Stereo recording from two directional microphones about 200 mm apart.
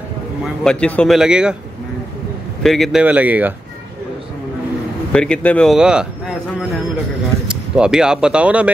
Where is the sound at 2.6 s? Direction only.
Centre (ahead or behind).